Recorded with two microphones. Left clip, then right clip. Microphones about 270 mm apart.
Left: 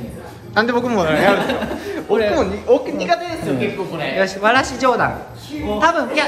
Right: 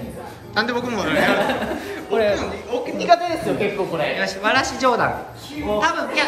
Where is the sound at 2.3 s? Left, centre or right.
Centre.